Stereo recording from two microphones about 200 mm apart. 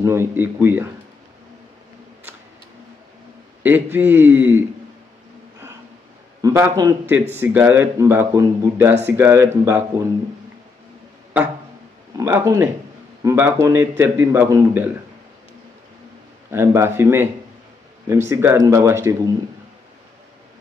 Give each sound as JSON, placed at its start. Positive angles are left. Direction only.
{"t": 0.0, "sound": "a man's voice", "side_deg": -15}
{"t": 3.6, "sound": "a man's voice", "side_deg": -10}
{"t": 6.4, "sound": "a man's voice", "side_deg": -15}
{"t": 12.2, "sound": "a man's voice", "side_deg": -15}
{"t": 16.4, "sound": "a man's voice", "side_deg": -10}